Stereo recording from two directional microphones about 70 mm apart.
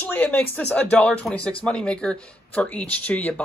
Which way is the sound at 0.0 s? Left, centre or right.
Left.